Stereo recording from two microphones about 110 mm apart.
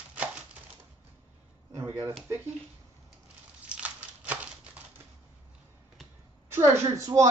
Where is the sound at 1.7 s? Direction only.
25° right (ahead or behind).